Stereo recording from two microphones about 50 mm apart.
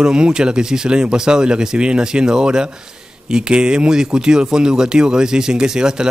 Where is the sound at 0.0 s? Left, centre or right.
Centre.